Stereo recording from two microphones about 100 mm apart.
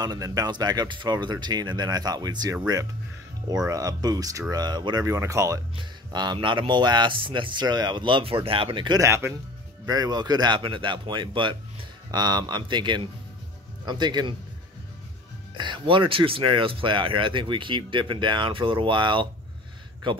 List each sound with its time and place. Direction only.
0.0 s speech: 40° right (ahead or behind)
5.8 s speech: 50° right (ahead or behind)
9.0 s speech: 25° right (ahead or behind)
9.8 s speech: 40° right (ahead or behind)
12.1 s speech: 40° right (ahead or behind)
15.5 s speech: 50° right (ahead or behind)